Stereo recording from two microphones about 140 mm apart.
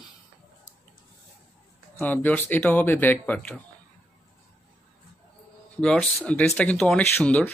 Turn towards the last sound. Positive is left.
turn(degrees=10)  # may be behind; listen again after turning